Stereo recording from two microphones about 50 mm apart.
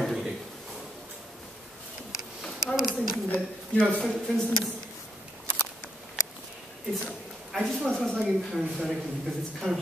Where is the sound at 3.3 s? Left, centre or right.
Left.